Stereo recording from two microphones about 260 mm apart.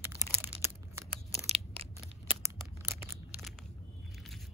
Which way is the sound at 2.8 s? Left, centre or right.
Centre.